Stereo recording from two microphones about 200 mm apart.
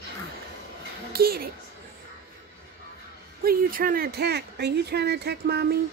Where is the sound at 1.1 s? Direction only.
50° right (ahead or behind).